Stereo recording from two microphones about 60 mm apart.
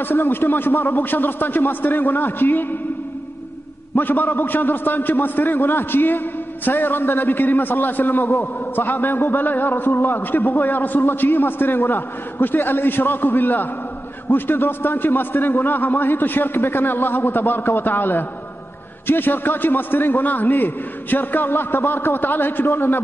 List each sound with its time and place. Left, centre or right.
0.0 s a man's voice: left
3.9 s a man's voice: left